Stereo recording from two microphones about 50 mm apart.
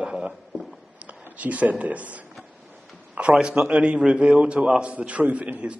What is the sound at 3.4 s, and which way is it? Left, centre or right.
A man's voice, centre.